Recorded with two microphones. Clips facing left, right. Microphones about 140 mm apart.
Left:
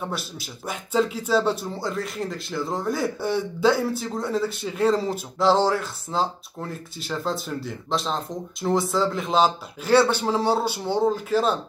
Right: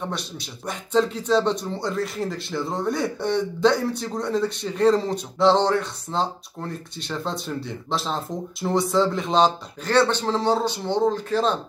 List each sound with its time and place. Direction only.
0.0 s speech: 5° left (ahead or behind)